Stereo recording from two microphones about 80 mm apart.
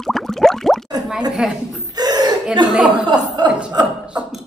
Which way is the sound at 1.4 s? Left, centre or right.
Centre.